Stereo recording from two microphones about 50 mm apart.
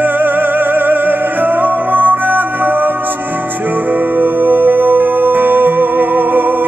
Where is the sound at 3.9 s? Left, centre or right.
Right.